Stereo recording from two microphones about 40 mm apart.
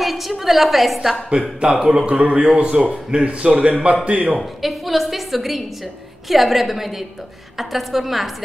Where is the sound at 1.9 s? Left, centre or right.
Right.